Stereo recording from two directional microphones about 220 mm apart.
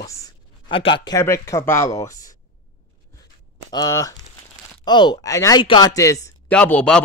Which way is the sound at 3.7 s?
15° left (ahead or behind).